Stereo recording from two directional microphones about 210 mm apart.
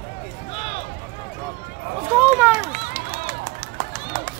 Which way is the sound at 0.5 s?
25° left (ahead or behind).